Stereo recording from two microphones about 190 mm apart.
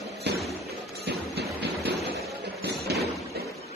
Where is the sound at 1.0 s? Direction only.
55° right (ahead or behind).